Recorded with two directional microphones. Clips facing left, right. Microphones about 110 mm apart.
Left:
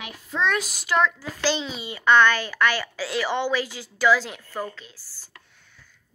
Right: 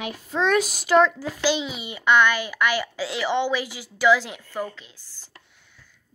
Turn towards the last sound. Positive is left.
turn(degrees=-20)  # may be behind; listen again after turning